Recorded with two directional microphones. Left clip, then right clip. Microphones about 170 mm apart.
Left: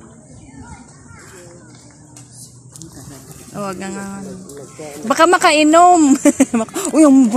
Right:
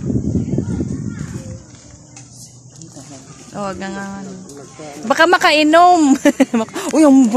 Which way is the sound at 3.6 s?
Centre (ahead or behind).